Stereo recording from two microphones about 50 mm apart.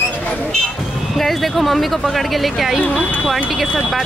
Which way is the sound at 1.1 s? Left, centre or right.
Centre.